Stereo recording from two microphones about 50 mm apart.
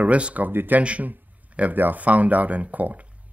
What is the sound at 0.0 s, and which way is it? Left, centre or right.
Speech, right.